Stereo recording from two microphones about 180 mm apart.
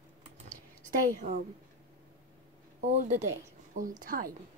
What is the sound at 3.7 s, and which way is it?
Speech, 50° right (ahead or behind).